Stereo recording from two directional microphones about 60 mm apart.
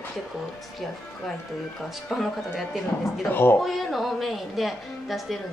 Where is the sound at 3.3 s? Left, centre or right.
Left.